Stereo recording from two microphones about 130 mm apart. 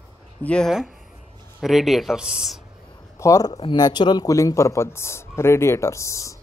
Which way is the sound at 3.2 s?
25° left (ahead or behind).